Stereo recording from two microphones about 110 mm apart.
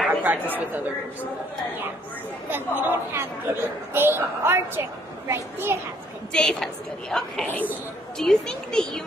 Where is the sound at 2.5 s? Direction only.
20° right (ahead or behind).